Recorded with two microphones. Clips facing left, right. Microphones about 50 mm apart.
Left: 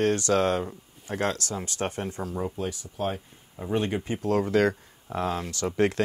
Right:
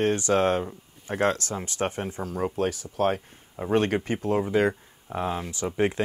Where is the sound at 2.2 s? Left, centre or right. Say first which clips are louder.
Right 7 dB; right.